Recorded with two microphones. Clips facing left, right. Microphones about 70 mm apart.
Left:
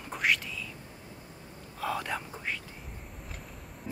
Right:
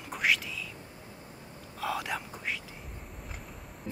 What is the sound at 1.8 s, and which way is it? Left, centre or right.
Speech, centre.